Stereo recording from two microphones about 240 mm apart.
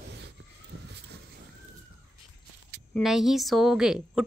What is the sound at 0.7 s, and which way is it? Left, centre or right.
Vehicle, right.